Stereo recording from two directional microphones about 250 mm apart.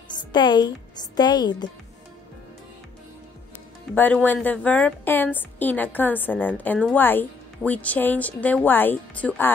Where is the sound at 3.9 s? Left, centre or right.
Centre.